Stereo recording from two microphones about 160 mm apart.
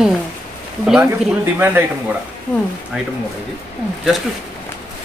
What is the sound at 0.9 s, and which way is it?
Speech, 5° right (ahead or behind).